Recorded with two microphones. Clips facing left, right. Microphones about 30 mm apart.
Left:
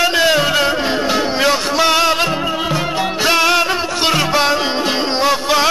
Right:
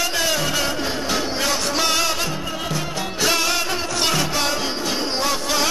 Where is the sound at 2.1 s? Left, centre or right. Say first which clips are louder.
Left 8 dB; left.